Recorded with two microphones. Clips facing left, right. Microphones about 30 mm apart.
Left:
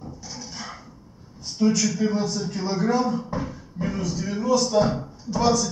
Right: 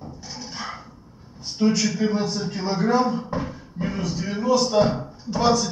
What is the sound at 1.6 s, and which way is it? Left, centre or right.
A man's voice, right.